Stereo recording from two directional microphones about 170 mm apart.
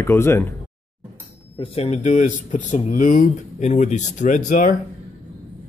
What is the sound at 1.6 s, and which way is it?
Speech, 40° left (ahead or behind).